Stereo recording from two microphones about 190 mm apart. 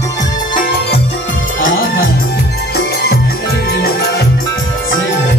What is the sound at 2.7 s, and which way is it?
Music, 55° left (ahead or behind).